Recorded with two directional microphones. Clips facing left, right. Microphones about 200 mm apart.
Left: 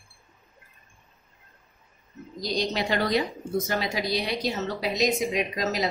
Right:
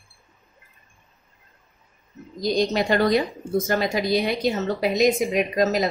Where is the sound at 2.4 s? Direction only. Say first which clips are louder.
Right 6 dB; 50° right (ahead or behind).